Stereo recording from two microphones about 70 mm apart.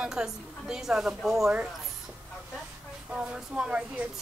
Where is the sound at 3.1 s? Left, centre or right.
Centre.